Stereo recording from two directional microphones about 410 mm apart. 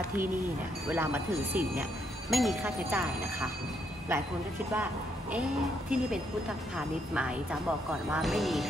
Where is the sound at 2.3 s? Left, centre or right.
Centre.